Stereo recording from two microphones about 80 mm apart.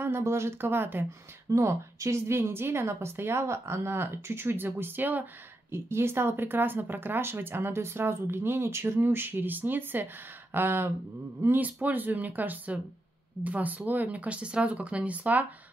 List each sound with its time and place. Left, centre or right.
0.0 s a woman's voice: right
1.5 s a woman's voice: right; by 15.4 s centre